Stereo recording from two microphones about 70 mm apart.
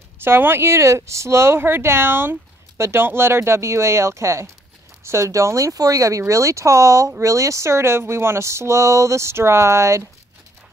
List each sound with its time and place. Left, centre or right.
0.2 s speech: right